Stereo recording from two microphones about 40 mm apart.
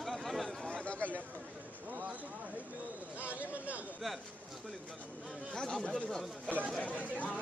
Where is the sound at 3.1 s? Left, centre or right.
Right.